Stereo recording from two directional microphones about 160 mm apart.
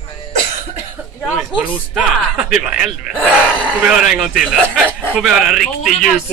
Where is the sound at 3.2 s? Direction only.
10° left (ahead or behind).